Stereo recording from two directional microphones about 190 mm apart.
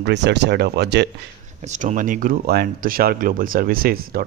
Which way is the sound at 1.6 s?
40° right (ahead or behind).